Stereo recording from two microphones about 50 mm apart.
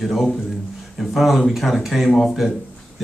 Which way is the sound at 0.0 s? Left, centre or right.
Centre.